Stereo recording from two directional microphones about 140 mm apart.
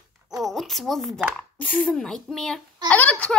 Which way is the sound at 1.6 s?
10° left (ahead or behind).